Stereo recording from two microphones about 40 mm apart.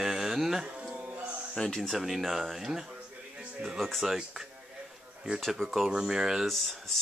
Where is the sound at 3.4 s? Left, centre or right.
Right.